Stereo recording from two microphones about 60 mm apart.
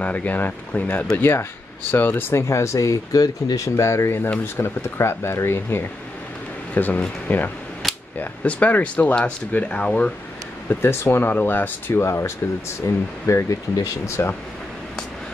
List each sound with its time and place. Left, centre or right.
0.0 s speech: left
1.1 s speech: left
2.4 s speech: left
4.6 s speech: left
6.7 s speech: left
7.8 s cap gun: centre
8.2 s speech: left
10.7 s speech: left
11.9 s speech: left
12.8 s speech: left
13.3 s speech: left